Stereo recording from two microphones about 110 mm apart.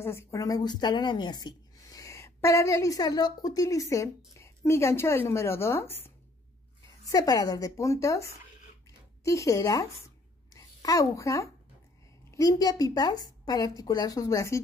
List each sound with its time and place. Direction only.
0.0 s speech: 25° left (ahead or behind)
0.6 s speech: 40° left (ahead or behind); by 6.1 s 20° left (ahead or behind)
7.1 s a woman's voice: 35° left (ahead or behind)